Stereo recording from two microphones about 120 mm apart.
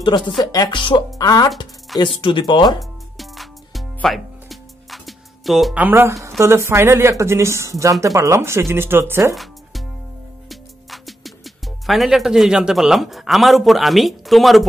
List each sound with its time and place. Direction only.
0.4 s speech: 30° left (ahead or behind)
1.1 s speech: 30° left (ahead or behind)
2.0 s speech: 45° left (ahead or behind)
2.8 s music: centre (ahead or behind)
5.8 s a woman's voice: 20° right (ahead or behind)
9.3 s music: centre (ahead or behind)
10.5 s speech: centre (ahead or behind)